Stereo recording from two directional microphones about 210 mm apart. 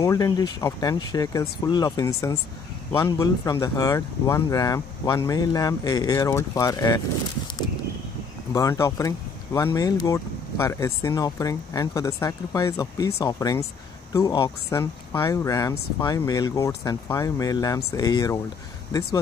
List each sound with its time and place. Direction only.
0.0 s speech: 15° left (ahead or behind)
8.5 s speech: 15° left (ahead or behind)